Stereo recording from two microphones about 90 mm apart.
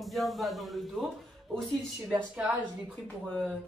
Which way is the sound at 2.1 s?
20° right (ahead or behind).